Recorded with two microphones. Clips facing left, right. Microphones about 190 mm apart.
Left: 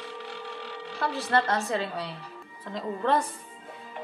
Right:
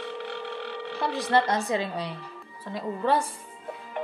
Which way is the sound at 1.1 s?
15° right (ahead or behind).